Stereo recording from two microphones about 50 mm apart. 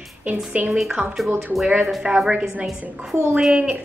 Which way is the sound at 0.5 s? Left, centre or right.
Right.